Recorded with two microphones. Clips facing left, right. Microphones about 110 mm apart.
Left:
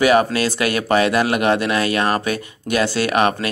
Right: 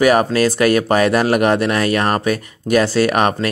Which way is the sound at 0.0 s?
40° right (ahead or behind).